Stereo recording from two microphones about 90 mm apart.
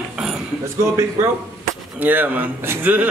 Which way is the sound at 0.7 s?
30° right (ahead or behind).